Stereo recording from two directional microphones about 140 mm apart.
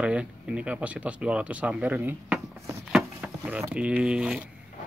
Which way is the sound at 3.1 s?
10° right (ahead or behind).